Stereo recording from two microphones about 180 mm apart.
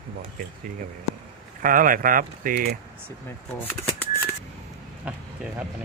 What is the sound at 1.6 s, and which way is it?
Speech, 50° right (ahead or behind).